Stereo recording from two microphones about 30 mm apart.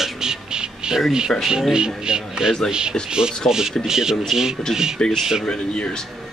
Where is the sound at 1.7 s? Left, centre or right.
Right.